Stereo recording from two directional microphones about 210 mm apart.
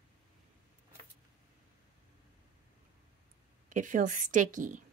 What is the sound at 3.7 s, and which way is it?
A woman's voice, 40° right (ahead or behind).